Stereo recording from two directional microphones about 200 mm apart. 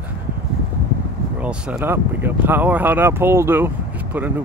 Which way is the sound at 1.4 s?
5° right (ahead or behind).